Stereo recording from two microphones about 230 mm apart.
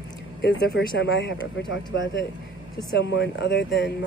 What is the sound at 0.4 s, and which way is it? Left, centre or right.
Speech, left.